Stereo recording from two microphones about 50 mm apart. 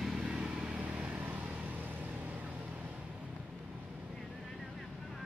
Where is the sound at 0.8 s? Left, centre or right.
Right.